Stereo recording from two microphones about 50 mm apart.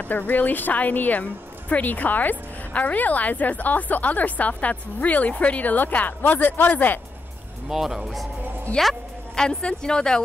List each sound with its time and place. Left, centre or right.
0.0 s speech: left
7.7 s speech: centre
8.7 s a woman's voice: centre